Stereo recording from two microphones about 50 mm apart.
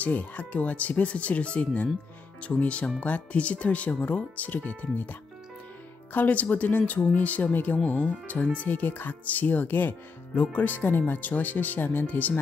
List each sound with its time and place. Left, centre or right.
0.0 s speech: left
6.1 s speech: left